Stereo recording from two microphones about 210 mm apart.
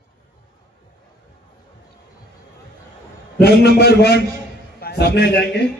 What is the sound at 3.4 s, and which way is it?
A man's voice, 50° left (ahead or behind).